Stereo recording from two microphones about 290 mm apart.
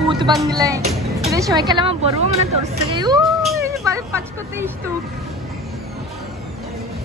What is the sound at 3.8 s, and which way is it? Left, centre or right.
Speech, centre.